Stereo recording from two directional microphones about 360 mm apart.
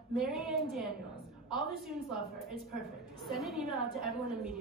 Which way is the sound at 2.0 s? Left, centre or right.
Centre.